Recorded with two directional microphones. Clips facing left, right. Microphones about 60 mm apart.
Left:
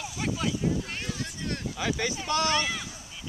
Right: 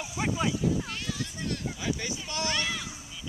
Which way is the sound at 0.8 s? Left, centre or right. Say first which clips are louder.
Even; left.